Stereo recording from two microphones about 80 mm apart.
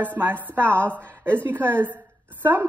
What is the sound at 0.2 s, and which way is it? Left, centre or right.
A woman's voice, right.